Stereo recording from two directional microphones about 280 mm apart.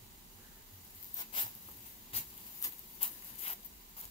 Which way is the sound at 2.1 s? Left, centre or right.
Left.